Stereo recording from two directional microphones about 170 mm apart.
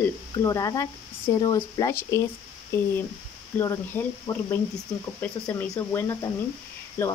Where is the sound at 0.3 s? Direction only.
20° left (ahead or behind).